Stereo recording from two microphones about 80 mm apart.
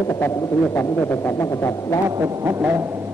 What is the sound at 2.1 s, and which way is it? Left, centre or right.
Speech, right.